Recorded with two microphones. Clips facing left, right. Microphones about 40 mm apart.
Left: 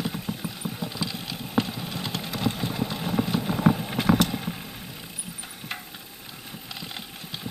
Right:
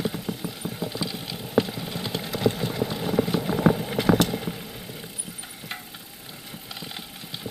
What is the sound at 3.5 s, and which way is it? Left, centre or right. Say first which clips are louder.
Clip-clop: right 1 dB; centre.